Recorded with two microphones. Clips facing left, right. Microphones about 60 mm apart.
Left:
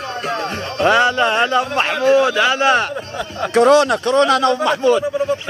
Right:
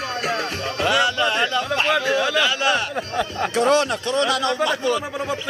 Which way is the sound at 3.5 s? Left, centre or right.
Left.